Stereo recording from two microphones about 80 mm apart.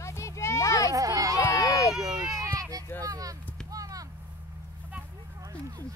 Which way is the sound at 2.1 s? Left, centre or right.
Right.